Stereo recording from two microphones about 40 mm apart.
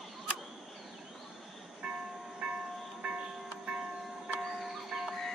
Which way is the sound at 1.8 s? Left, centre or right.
Right.